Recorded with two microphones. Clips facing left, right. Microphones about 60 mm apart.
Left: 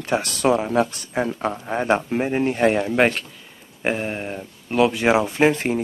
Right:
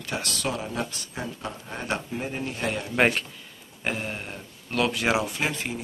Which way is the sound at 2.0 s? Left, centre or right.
Left.